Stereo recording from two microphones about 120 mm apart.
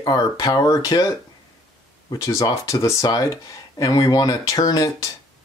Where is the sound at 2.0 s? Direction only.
30° left (ahead or behind).